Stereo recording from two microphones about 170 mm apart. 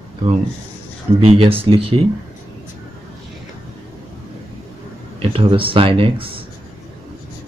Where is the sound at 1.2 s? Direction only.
35° right (ahead or behind).